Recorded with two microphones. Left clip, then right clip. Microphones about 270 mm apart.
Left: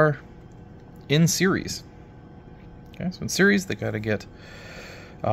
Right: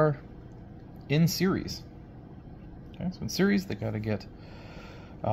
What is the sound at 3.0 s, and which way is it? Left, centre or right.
Speech, left.